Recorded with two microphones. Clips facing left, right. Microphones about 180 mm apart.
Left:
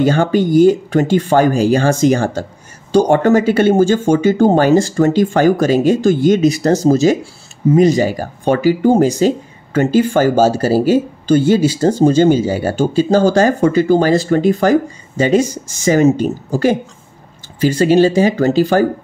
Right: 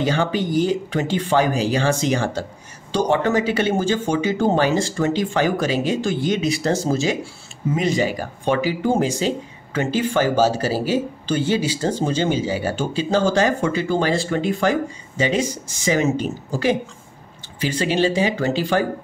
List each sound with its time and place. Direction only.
0.0 s speech: 50° left (ahead or behind)